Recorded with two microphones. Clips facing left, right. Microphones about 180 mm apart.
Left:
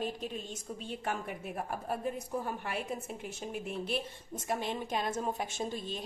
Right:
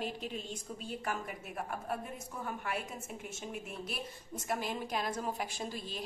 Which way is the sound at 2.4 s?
30° left (ahead or behind).